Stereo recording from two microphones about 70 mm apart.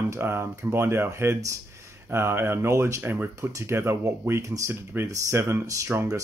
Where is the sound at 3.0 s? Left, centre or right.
Right.